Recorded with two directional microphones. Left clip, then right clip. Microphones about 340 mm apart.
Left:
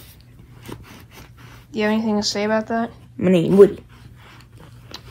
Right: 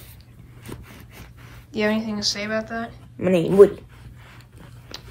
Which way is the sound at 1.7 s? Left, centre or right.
Centre.